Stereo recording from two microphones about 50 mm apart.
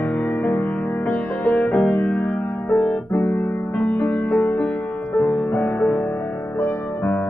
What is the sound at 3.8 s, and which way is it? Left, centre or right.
Music, left.